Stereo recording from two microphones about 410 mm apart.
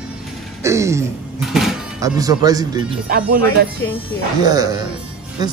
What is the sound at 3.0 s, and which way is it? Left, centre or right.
Speech, right.